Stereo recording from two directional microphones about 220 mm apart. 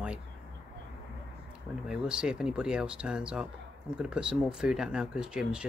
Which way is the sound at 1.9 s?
5° right (ahead or behind).